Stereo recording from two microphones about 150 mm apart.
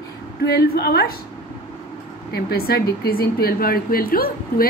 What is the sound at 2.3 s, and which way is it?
Speech, 90° left.